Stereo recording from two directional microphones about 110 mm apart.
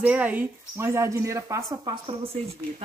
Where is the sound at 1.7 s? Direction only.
40° right (ahead or behind).